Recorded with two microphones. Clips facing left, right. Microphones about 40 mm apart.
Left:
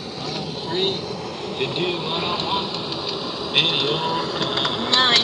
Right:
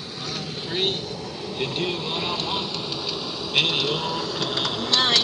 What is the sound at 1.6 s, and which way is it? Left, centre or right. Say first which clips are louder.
Speech: left 3 dB; centre.